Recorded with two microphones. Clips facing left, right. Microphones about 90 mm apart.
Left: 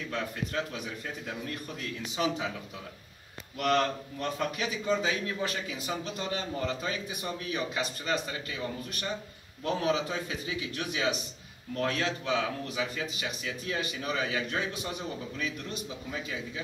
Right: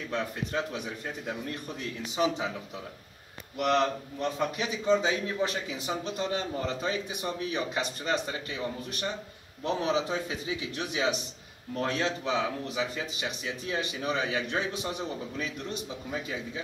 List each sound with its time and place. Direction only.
0.1 s a man's voice: 25° right (ahead or behind)
3.5 s a man's voice: 10° right (ahead or behind); by 5.8 s 30° right (ahead or behind)
5.9 s a man's voice: 5° right (ahead or behind)
6.7 s a man's voice: 25° right (ahead or behind)
9.6 s a man's voice: 25° right (ahead or behind)